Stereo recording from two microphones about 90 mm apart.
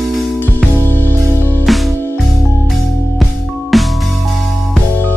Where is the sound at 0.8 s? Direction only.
20° left (ahead or behind).